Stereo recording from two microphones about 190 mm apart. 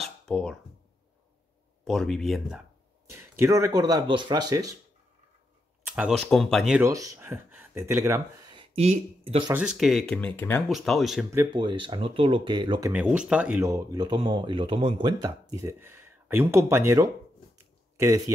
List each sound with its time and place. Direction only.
0.0 s a sound: 5° left (ahead or behind)
1.9 s speech: centre (ahead or behind)
3.1 s speech: 15° right (ahead or behind)
5.9 s speech: 5° right (ahead or behind)
6.8 s speech: 15° right (ahead or behind)
8.7 s speech: 35° right (ahead or behind)
9.5 s speech: 5° right (ahead or behind); by 10.6 s 10° left (ahead or behind)
10.7 s speech: centre (ahead or behind)
11.5 s speech: 25° right (ahead or behind)
12.9 s speech: 5° right (ahead or behind)
13.7 s speech: 20° right (ahead or behind)